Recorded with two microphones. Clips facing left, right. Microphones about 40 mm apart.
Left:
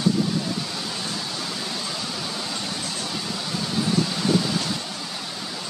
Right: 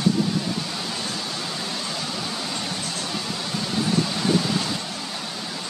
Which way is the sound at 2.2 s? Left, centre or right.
Centre.